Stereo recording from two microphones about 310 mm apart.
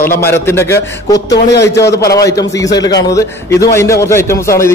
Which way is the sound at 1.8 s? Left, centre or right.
Left.